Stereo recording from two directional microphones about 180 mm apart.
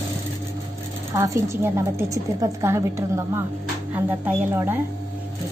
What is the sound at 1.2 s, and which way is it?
A woman's voice, 15° right (ahead or behind).